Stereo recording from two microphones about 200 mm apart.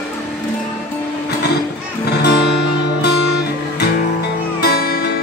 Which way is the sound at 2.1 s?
55° left (ahead or behind).